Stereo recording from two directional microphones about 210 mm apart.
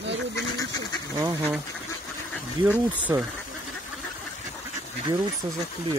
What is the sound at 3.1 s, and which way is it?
Speech, 10° right (ahead or behind).